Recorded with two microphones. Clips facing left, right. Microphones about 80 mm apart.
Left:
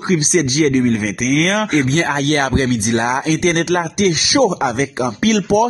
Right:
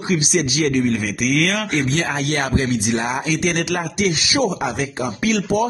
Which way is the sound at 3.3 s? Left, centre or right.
Left.